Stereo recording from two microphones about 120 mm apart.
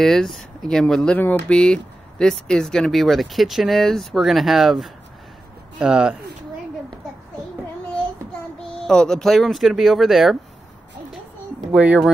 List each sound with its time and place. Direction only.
0.0 s speech: 5° left (ahead or behind)
8.8 s speech: 5° left (ahead or behind)
11.7 s speech: 10° right (ahead or behind)